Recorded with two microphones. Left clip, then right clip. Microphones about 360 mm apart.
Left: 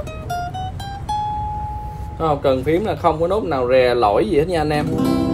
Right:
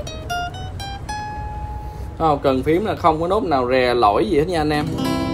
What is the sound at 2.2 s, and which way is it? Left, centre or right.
Speech, centre.